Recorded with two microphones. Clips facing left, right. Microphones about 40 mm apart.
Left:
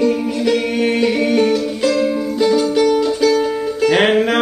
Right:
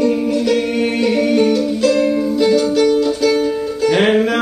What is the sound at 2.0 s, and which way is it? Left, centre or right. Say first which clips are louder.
Music: right 2 dB; centre.